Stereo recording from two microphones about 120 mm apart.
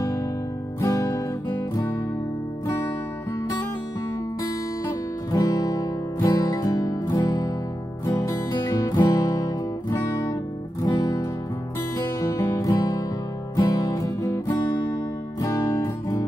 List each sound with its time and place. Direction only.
0.7 s music: 30° left (ahead or behind)
4.8 s music: 30° left (ahead or behind)
15.4 s music: 30° left (ahead or behind)